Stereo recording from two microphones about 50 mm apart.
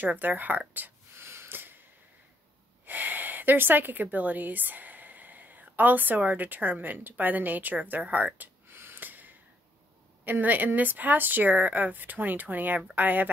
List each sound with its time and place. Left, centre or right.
0.0 s a woman's voice: right
1.1 s gasp: right
2.8 s speech: right
8.4 s a sound: right
10.2 s a woman's voice: right